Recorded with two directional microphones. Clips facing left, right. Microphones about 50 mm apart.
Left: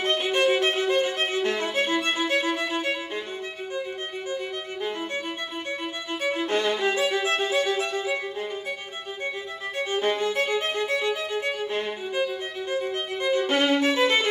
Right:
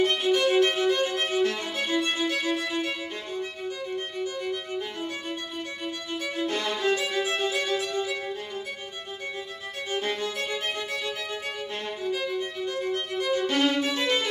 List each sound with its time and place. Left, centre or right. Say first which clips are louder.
0.0 s music: even; left
0.6 s violin: even; left
6.2 s music: left 5 dB; left
9.8 s music: left 5 dB; left
13.7 s violin: left 4 dB; left